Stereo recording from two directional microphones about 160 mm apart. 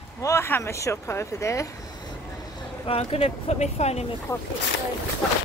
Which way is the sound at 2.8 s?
35° left (ahead or behind).